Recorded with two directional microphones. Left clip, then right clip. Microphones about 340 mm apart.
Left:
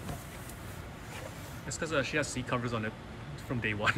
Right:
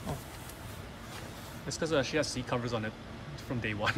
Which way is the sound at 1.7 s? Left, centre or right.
Centre.